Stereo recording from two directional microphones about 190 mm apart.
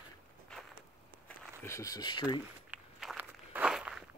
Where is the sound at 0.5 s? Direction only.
5° left (ahead or behind).